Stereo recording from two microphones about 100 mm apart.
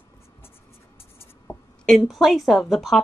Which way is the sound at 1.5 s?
25° left (ahead or behind).